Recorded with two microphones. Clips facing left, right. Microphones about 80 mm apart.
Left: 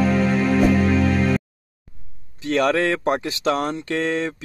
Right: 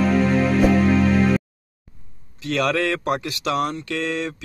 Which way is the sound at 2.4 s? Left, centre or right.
Left.